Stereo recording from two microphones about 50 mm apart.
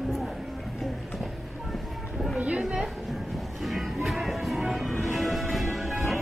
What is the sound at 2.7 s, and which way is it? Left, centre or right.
Music, centre.